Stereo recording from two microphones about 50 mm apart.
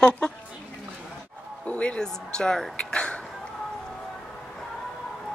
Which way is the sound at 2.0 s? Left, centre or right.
Centre.